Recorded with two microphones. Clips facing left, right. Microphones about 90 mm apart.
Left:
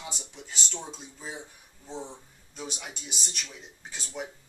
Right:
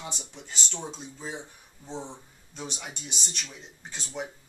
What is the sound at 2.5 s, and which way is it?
Speech, 5° left (ahead or behind).